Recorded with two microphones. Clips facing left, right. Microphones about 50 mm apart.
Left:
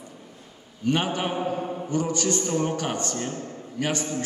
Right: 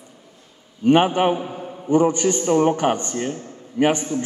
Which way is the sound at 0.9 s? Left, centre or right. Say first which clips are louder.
Right 9 dB; right.